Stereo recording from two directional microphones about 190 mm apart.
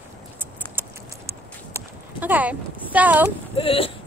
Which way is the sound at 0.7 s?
10° right (ahead or behind).